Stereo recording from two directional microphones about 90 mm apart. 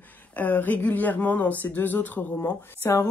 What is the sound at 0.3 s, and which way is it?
Speech, 20° left (ahead or behind).